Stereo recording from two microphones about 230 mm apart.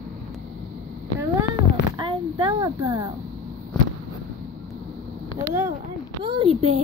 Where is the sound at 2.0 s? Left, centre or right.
Right.